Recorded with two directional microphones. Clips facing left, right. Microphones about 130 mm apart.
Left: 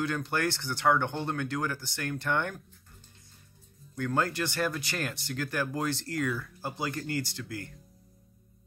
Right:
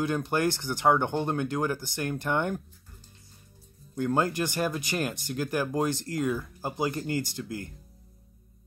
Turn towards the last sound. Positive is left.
turn(degrees=-20)  # may be behind; listen again after turning